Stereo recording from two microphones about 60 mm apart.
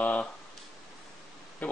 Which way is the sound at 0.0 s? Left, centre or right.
Left.